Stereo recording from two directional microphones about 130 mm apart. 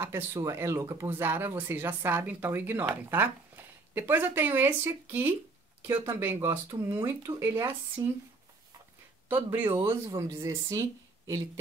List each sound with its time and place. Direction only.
0.0 s speech: 20° right (ahead or behind)
9.3 s speech: 15° right (ahead or behind)
10.0 s speech: 30° right (ahead or behind)